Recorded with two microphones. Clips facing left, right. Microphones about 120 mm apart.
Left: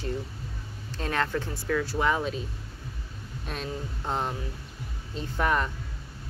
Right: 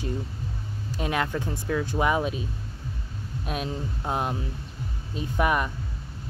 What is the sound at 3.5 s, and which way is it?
Speech, 15° right (ahead or behind).